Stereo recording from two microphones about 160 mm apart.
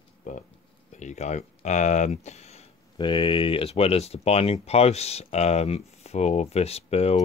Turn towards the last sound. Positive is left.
turn(degrees=40)  # may be behind; listen again after turning